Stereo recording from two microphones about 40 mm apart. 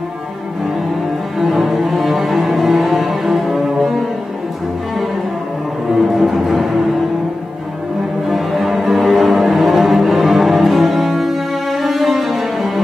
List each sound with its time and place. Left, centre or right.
1.4 s cello: centre
5.9 s music: centre
8.3 s music: centre